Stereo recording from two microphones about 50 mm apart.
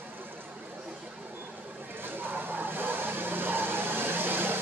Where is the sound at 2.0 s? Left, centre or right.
Right.